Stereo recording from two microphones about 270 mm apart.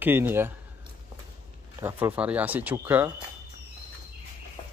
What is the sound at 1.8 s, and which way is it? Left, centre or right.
Speech, centre.